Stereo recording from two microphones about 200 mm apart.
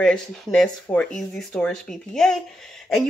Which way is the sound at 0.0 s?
5° left (ahead or behind).